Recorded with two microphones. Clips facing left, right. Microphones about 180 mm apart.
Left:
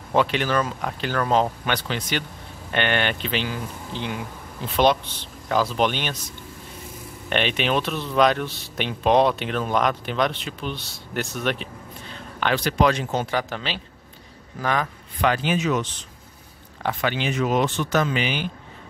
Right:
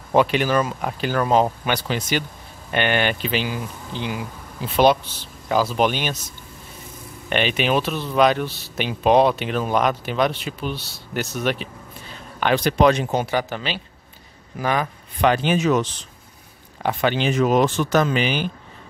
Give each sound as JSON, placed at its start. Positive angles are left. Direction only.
{"t": 0.1, "sound": "speech", "side_deg": -10}
{"t": 7.2, "sound": "speech", "side_deg": -5}
{"t": 15.1, "sound": "speech", "side_deg": -20}
{"t": 15.5, "sound": "speech", "side_deg": -45}
{"t": 17.0, "sound": "speech", "side_deg": -30}
{"t": 17.4, "sound": "speech", "side_deg": -45}